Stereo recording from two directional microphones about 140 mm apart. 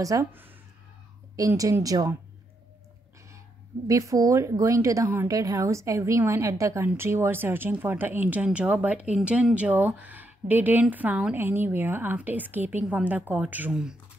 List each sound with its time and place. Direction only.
0.0 s speech: 20° right (ahead or behind)
3.3 s speech: 20° right (ahead or behind); by 13.9 s 5° right (ahead or behind)